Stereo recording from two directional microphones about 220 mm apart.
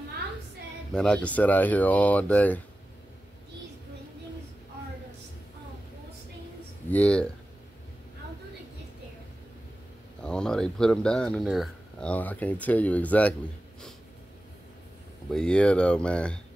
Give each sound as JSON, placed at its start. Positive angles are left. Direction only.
{"t": 0.9, "sound": "speech", "side_deg": 5}
{"t": 6.9, "sound": "speech", "side_deg": 5}
{"t": 10.2, "sound": "speech", "side_deg": 5}
{"t": 15.2, "sound": "speech", "side_deg": 5}